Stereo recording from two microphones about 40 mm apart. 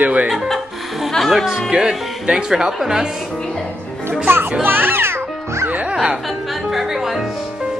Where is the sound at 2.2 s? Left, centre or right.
Right.